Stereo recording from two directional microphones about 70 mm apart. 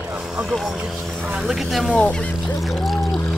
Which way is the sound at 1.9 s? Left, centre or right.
Centre.